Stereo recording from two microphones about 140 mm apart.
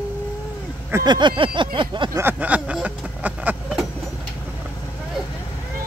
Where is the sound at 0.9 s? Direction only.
25° right (ahead or behind).